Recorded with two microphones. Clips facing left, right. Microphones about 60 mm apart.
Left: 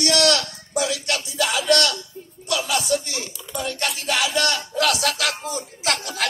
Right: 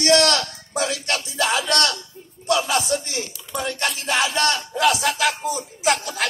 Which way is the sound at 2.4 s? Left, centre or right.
Right.